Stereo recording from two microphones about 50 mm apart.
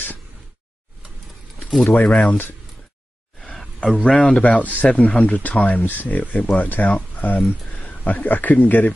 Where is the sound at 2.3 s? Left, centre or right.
Left.